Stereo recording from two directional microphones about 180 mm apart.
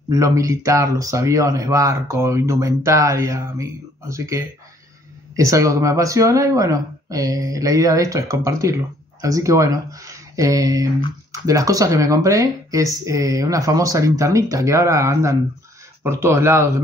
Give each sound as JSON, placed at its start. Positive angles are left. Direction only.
{"t": 0.1, "sound": "speech", "side_deg": -15}